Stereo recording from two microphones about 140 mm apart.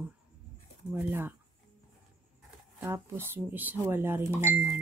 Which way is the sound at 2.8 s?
15° right (ahead or behind).